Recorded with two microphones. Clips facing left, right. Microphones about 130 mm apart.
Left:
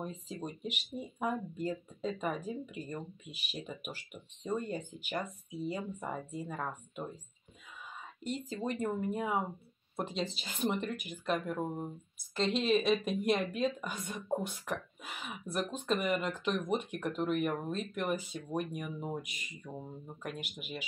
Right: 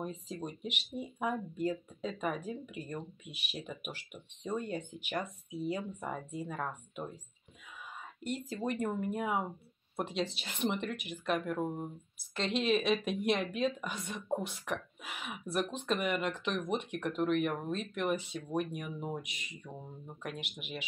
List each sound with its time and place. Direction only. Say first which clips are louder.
0.0 s speech: right 1 dB; centre (ahead or behind)
8.2 s speech: even; 5° right (ahead or behind)